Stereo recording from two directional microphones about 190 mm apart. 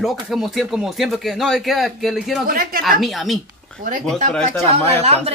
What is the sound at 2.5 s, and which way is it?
Speech, 50° right (ahead or behind).